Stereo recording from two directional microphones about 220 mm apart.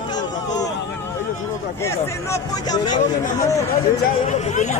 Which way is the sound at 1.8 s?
15° left (ahead or behind).